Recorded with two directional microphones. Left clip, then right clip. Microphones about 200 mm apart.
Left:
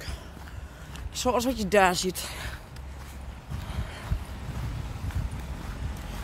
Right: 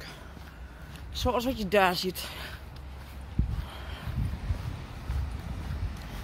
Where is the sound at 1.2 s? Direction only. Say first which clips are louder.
Left 3 dB; 10° left (ahead or behind).